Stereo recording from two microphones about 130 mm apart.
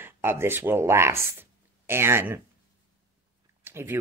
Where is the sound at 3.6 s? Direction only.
15° right (ahead or behind).